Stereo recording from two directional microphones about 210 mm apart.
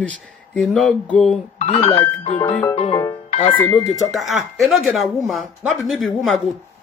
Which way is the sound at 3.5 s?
5° left (ahead or behind).